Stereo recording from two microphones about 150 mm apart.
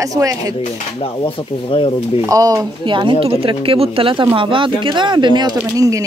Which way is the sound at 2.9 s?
30° right (ahead or behind).